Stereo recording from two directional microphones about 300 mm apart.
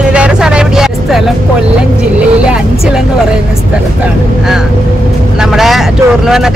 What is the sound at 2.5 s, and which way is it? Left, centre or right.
Speech, centre.